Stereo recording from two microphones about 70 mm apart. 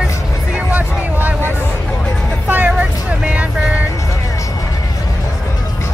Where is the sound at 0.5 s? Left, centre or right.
Right.